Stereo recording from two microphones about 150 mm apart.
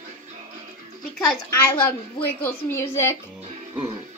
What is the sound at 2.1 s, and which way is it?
A woman's voice, 15° left (ahead or behind).